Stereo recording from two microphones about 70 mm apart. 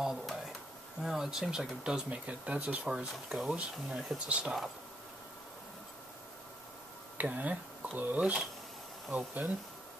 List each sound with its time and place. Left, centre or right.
0.0 s a sound: centre
1.0 s speech: centre
2.0 s speech: centre
2.9 s speech: centre
4.3 s speech: centre
7.2 s speech: right